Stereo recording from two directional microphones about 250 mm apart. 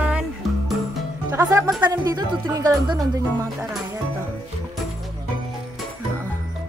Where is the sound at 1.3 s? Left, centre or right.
Centre.